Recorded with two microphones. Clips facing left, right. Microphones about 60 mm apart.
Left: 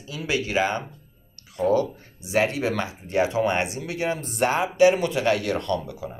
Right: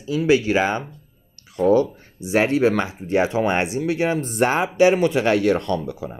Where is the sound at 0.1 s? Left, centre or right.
Right.